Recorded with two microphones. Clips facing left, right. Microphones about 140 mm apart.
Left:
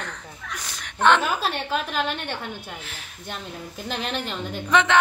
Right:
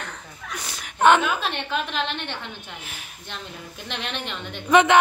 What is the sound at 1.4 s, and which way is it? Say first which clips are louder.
A woman's voice: left 1 dB; 40° left (ahead or behind).